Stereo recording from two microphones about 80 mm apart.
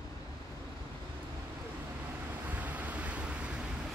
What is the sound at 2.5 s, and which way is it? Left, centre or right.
Vehicle, centre.